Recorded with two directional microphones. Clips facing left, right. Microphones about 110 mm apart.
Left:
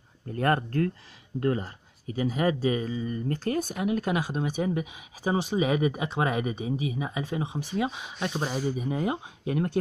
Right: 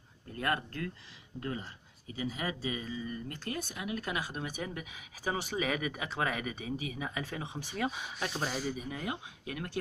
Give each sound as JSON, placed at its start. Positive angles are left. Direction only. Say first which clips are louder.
{"t": 0.4, "sound": "speech", "louder": "left 9 dB", "side_deg": 40}
{"t": 3.1, "sound": "speech", "louder": "left 10 dB", "side_deg": 40}
{"t": 8.0, "sound": "speech", "louder": "left 5 dB", "side_deg": 5}
{"t": 8.7, "sound": "speech", "louder": "left 9 dB", "side_deg": 30}